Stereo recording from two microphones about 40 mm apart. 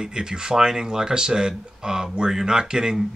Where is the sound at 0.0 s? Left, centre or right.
Centre.